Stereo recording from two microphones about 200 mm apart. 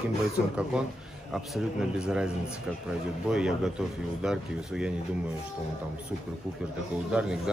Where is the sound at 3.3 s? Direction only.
5° right (ahead or behind).